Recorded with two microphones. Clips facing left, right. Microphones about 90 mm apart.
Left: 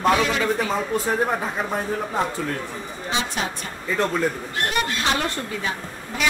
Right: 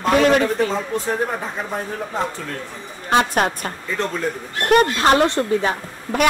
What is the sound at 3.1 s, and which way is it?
Speech, 55° right (ahead or behind).